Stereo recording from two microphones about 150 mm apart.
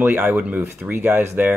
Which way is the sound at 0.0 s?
15° right (ahead or behind).